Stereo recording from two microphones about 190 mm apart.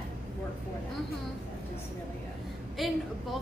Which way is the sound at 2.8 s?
Centre (ahead or behind).